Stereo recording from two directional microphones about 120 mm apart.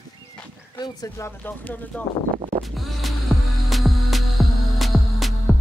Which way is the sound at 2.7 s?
Centre (ahead or behind).